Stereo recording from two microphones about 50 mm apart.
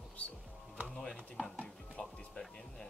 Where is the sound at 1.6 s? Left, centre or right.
Centre.